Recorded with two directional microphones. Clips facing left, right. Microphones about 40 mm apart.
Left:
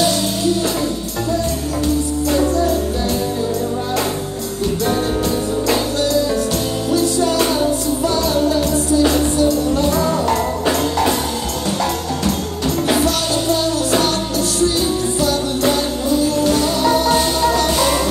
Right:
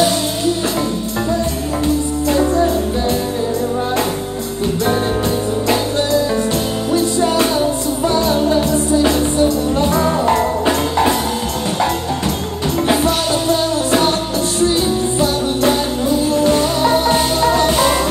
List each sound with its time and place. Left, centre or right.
8.0 s music: right
12.8 s music: right
16.3 s music: right